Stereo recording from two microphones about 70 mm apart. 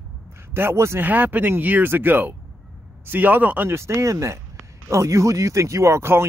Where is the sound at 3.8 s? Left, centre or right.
Right.